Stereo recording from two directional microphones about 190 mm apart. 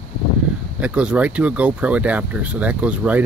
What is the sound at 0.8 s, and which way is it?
Speech, 5° right (ahead or behind).